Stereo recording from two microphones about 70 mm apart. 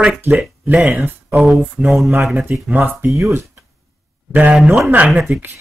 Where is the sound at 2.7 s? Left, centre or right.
Right.